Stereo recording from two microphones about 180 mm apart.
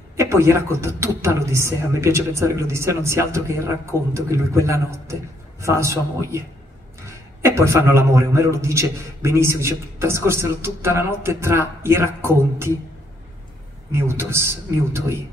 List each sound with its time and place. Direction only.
0.2 s a man's voice: 15° right (ahead or behind)
7.4 s a man's voice: 15° right (ahead or behind)
13.9 s a man's voice: 15° right (ahead or behind)